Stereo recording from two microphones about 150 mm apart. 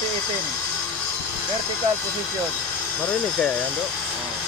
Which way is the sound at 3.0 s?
10° left (ahead or behind).